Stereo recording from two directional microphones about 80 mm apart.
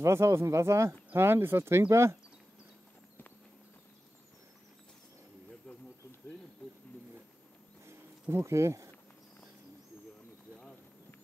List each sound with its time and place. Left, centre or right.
0.0 s speech: right
5.7 s a sound: centre
7.8 s bird: right